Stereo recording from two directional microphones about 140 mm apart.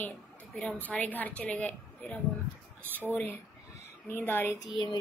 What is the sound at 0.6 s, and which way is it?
A woman's voice, 10° left (ahead or behind).